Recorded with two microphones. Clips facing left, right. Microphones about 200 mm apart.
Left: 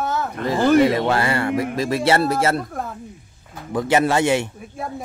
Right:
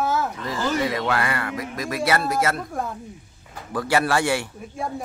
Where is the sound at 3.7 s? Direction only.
20° left (ahead or behind).